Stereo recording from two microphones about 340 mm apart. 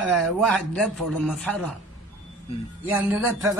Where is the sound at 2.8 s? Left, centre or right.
Centre.